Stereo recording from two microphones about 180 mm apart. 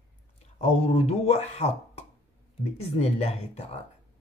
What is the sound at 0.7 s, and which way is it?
Speech, 35° left (ahead or behind).